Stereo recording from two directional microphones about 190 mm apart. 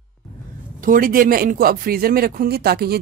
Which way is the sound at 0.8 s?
45° right (ahead or behind).